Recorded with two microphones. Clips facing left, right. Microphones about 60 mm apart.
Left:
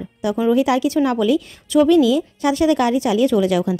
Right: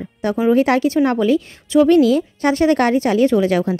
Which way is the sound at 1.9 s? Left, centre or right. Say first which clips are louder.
Right 1 dB; right.